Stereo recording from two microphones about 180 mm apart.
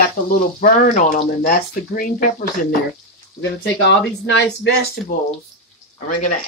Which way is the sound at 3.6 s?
80° left.